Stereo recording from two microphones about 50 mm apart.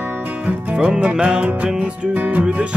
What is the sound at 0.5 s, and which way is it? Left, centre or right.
Music, right.